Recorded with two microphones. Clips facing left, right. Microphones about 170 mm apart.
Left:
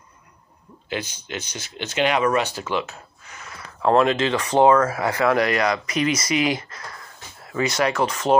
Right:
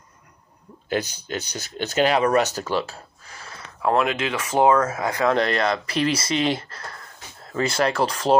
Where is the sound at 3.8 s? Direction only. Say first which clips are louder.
Left 3 dB; 5° right (ahead or behind).